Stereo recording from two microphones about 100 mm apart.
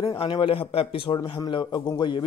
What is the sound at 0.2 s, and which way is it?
A man's voice, 55° left (ahead or behind).